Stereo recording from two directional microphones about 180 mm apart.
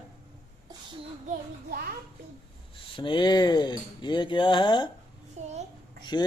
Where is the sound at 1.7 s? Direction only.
55° right (ahead or behind).